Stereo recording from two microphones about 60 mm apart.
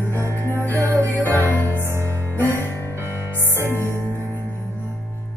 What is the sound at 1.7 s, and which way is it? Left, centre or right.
Music, right.